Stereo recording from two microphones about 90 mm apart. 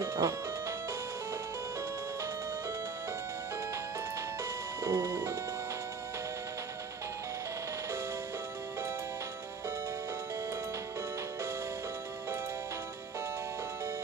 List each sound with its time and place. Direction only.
0.0 s music: 35° right (ahead or behind)
4.8 s music: 30° right (ahead or behind)